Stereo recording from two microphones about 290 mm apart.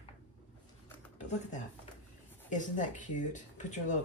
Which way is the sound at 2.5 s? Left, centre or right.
Left.